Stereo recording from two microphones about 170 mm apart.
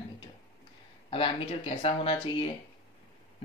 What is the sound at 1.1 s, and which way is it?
Speech, 35° left (ahead or behind).